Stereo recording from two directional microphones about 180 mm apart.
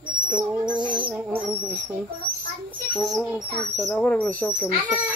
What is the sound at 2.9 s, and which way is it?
Speech, centre (ahead or behind).